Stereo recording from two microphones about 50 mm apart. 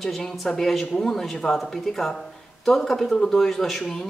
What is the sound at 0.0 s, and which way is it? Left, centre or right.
Speech, centre.